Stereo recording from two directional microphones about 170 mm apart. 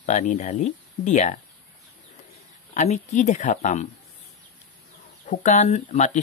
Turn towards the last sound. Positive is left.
turn(degrees=45)  # may be behind; listen again after turning